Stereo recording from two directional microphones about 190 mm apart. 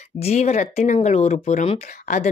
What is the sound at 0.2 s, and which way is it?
Speech, 35° left (ahead or behind).